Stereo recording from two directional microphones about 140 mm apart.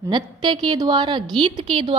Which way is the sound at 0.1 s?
35° right (ahead or behind).